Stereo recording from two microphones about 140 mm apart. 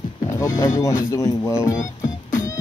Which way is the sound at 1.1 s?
20° left (ahead or behind).